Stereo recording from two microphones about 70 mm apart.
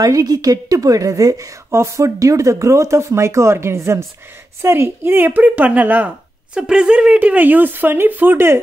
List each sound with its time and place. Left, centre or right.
0.0 s a woman's voice: right
1.7 s a woman's voice: right